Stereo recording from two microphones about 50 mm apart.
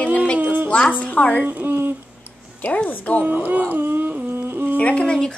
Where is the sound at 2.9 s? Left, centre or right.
Left.